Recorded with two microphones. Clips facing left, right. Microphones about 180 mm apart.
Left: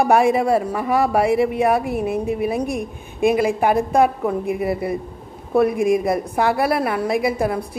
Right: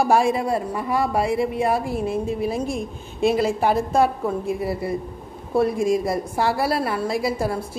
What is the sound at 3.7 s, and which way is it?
Speech, 60° left (ahead or behind).